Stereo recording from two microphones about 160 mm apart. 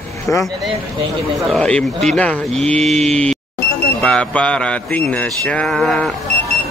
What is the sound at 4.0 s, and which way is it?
Mantra, 5° left (ahead or behind).